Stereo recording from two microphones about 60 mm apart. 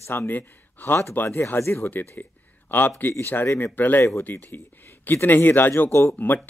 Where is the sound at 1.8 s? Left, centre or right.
Left.